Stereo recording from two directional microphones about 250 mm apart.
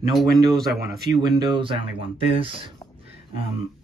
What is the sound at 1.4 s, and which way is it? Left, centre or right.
Speech, centre.